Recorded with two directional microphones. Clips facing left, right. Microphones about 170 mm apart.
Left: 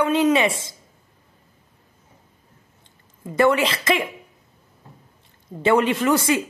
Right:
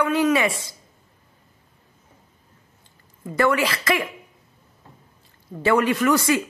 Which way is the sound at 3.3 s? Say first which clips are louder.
Left 2 dB; 25° left (ahead or behind).